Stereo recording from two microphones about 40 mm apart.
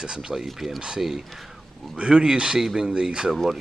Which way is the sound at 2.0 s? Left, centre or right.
Right.